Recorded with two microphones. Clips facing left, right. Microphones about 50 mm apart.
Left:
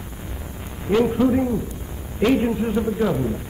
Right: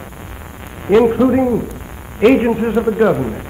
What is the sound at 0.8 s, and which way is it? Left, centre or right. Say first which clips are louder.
Speech: right 7 dB; right.